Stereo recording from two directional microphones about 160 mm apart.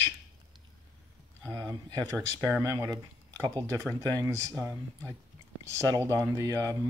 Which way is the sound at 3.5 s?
15° left (ahead or behind).